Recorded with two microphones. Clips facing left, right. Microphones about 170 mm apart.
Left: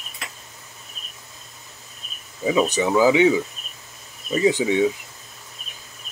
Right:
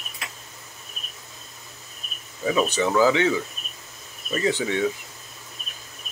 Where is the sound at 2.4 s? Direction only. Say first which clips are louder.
Left 2 dB; 15° left (ahead or behind).